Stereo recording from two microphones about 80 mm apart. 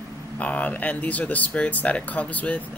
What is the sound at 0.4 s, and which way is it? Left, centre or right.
Speech, centre.